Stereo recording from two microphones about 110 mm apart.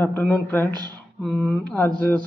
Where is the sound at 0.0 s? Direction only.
20° left (ahead or behind).